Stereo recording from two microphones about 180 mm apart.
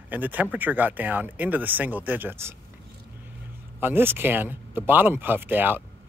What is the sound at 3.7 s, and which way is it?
Speech, 10° right (ahead or behind).